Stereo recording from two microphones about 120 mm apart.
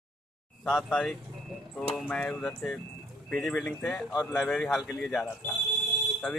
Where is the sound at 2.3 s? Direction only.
Centre (ahead or behind).